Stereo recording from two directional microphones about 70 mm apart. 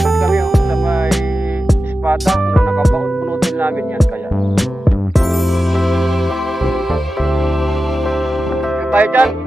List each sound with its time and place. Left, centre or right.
0.0 s music: centre
2.2 s music: centre
4.6 s music: centre
8.9 s music: right